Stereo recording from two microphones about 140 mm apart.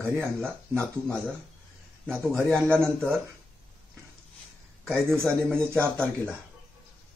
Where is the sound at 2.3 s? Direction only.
10° left (ahead or behind).